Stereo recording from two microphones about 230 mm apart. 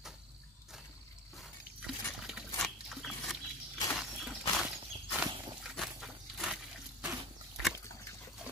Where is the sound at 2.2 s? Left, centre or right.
Centre.